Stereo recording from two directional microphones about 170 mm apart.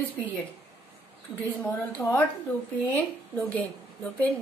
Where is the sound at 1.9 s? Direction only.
10° left (ahead or behind).